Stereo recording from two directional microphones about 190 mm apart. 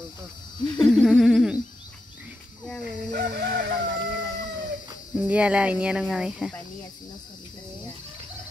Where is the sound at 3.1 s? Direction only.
60° right (ahead or behind).